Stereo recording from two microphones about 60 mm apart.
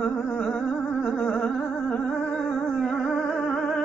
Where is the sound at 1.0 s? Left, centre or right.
Centre.